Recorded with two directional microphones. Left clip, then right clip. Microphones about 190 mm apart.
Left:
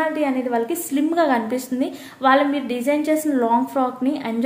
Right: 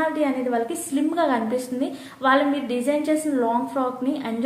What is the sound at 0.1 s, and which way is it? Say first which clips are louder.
A woman's voice: left 2 dB; 30° left (ahead or behind).